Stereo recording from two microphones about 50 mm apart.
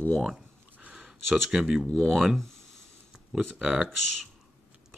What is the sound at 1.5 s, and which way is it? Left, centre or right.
Speech, centre.